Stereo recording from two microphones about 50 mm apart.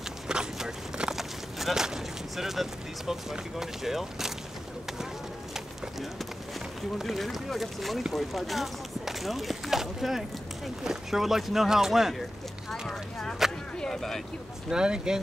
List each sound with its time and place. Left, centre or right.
0.3 s a sound: centre
1.1 s speech: centre
5.5 s bird: centre
7.0 s speech: centre
12.8 s speech: centre
14.7 s speech: centre